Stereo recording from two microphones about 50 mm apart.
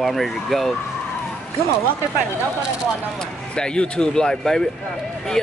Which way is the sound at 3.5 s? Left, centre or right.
Centre.